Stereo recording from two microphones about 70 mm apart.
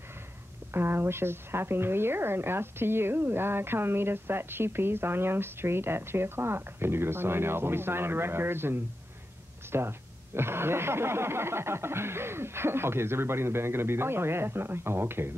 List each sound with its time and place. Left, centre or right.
0.7 s a woman's voice: right